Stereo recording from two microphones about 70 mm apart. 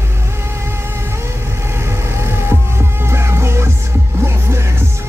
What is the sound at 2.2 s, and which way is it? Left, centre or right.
Music, right.